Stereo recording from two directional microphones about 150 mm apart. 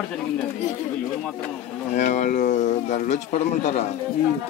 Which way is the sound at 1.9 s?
50° left (ahead or behind).